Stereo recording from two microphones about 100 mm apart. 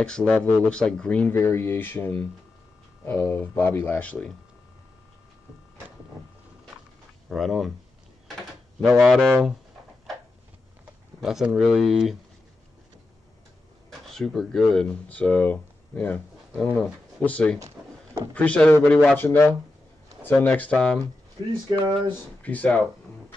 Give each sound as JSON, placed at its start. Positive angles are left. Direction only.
{"t": 0.0, "sound": "speech", "side_deg": 10}
{"t": 1.3, "sound": "speech", "side_deg": 25}
{"t": 7.2, "sound": "speech", "side_deg": 0}
{"t": 8.8, "sound": "speech", "side_deg": 0}
{"t": 11.1, "sound": "speech", "side_deg": -5}
{"t": 13.8, "sound": "speech", "side_deg": 5}
{"t": 22.4, "sound": "speech", "side_deg": 15}